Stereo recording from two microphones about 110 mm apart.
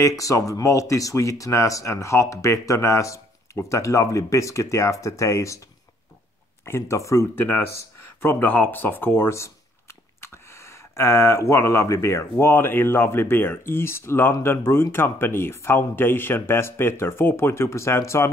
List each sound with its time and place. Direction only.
0.0 s speech: 30° left (ahead or behind)
6.6 s speech: 25° left (ahead or behind)